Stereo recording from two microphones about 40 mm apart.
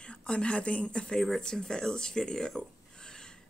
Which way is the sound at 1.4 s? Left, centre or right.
Centre.